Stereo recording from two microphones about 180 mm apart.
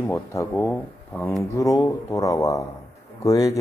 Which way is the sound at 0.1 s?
15° left (ahead or behind).